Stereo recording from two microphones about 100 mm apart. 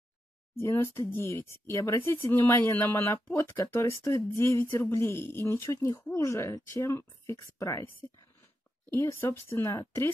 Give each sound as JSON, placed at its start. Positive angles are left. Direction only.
{"t": 0.6, "sound": "speech", "side_deg": 25}
{"t": 9.2, "sound": "speech", "side_deg": 25}